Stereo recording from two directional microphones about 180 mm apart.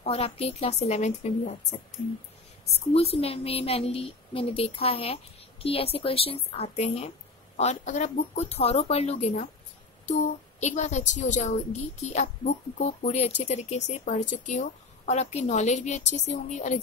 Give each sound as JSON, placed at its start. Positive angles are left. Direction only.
{"t": 0.0, "sound": "speech", "side_deg": 35}
{"t": 2.9, "sound": "speech", "side_deg": 35}
{"t": 10.6, "sound": "speech", "side_deg": 40}